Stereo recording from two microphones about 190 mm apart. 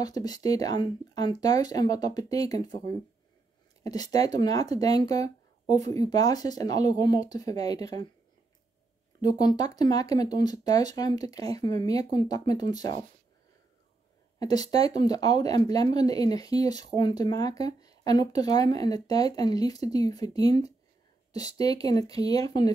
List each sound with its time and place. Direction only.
0.0 s speech: 20° left (ahead or behind)
3.8 s speech: 20° left (ahead or behind)
9.2 s speech: 20° left (ahead or behind)
14.4 s speech: 20° left (ahead or behind)